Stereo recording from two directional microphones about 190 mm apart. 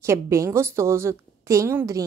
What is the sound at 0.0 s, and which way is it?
A woman's voice, 15° right (ahead or behind).